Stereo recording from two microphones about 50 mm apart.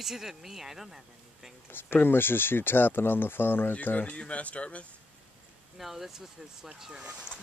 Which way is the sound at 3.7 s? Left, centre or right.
Left.